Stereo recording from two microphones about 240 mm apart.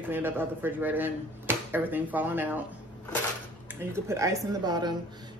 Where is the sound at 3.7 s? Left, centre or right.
Centre.